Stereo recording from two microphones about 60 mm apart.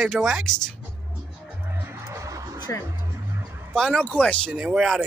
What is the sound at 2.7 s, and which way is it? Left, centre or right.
Speech, left.